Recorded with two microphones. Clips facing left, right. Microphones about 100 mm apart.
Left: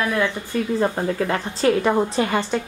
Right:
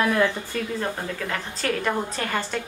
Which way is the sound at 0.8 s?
30° left (ahead or behind).